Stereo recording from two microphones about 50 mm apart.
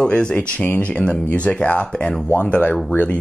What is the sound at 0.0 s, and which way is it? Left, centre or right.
Speech, centre.